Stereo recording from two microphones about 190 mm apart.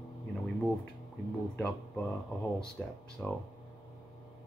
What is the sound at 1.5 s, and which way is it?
Speech, 5° left (ahead or behind).